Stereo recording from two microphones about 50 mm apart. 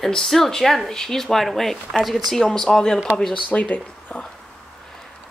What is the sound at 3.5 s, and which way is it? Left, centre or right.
Speech, left.